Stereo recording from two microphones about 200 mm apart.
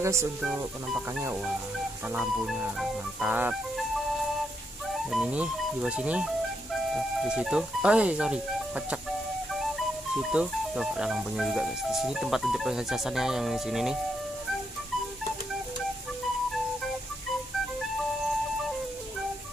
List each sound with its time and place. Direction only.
0.0 s speech: 15° right (ahead or behind)
0.4 s speech: 5° right (ahead or behind)
5.1 s speech: 5° right (ahead or behind)
10.1 s speech: 5° right (ahead or behind)